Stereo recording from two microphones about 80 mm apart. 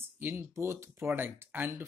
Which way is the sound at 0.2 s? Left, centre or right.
Right.